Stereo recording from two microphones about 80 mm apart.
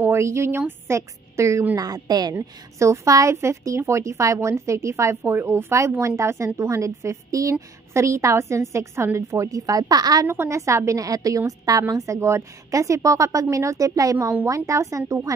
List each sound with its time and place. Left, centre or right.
0.0 s a woman's voice: right
1.8 s speech: right
2.3 s a woman's voice: right
10.2 s a woman's voice: right